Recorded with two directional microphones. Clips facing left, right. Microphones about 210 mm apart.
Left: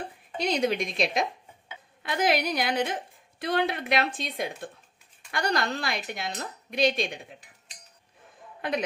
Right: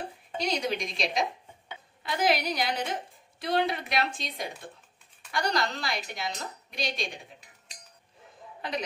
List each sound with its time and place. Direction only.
0.4 s speech: 55° left (ahead or behind)
8.5 s a man's voice: 55° left (ahead or behind)